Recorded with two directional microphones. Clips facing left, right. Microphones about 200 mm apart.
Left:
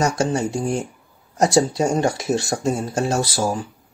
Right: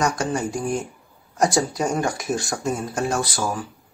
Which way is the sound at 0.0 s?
25° left (ahead or behind).